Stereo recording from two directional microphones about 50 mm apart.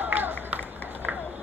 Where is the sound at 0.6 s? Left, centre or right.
Left.